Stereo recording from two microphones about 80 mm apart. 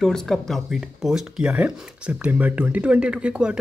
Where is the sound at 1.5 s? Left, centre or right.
Centre.